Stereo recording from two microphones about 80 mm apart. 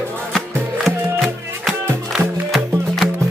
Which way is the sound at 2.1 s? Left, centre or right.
Centre.